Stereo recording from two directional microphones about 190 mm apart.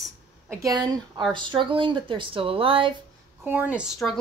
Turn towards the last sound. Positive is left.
turn(degrees=-10)  # may be behind; listen again after turning